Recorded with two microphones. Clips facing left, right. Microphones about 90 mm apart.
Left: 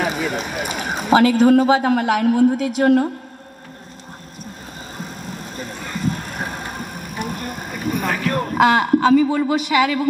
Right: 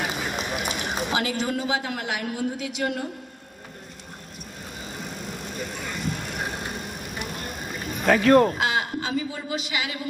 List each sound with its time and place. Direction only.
0.0 s a man's voice: 50° left (ahead or behind)
5.6 s vehicle: 40° left (ahead or behind)
8.5 s a woman's voice: 55° left (ahead or behind)